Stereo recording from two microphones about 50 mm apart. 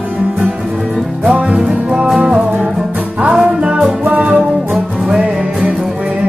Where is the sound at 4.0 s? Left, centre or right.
Right.